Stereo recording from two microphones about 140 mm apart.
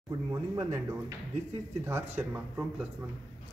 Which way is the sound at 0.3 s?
25° right (ahead or behind).